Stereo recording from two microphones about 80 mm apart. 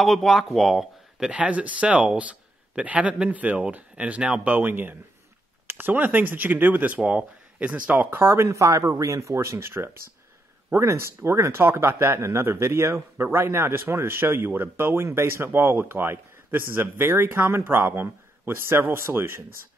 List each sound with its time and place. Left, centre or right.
0.0 s speech: centre; by 19.4 s right